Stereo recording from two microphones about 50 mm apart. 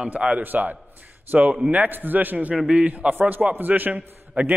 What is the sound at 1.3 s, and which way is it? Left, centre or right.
Speech, right.